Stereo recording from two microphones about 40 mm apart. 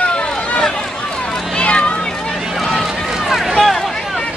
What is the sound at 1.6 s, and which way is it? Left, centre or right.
Run, left.